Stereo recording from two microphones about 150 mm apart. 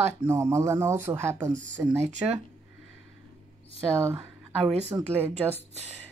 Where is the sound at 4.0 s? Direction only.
15° right (ahead or behind).